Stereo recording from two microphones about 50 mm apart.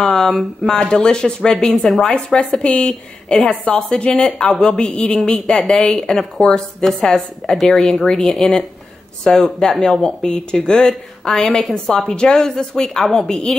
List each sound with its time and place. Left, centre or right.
0.0 s speech: centre
0.9 s a woman's voice: centre
1.7 s a woman's voice: centre
2.0 s a woman's voice: centre